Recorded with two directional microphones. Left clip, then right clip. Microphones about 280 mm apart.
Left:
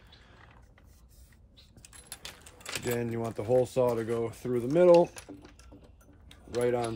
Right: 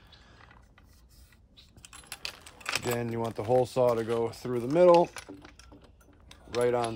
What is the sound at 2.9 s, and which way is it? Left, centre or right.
Speech, right.